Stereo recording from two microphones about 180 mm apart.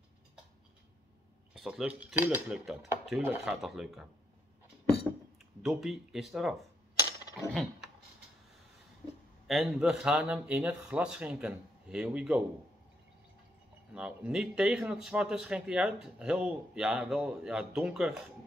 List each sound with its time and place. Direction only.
1.5 s speech: centre (ahead or behind)
5.6 s speech: centre (ahead or behind)
7.4 s mechanisms: 15° left (ahead or behind)
9.5 s speech: centre (ahead or behind)
13.9 s speech: 5° right (ahead or behind)